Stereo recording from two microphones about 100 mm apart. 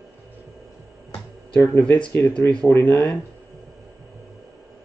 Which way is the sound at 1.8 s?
15° left (ahead or behind).